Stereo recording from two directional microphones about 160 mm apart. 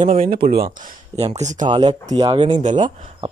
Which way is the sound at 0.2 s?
70° right (ahead or behind).